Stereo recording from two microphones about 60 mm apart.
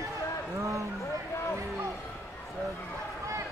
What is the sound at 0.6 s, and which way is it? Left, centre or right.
Speech, right.